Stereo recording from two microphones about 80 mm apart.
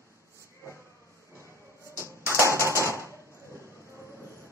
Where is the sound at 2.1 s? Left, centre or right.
Right.